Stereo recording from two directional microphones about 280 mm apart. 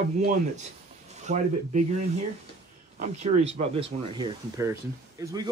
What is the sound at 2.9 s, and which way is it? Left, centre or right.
Speech, right.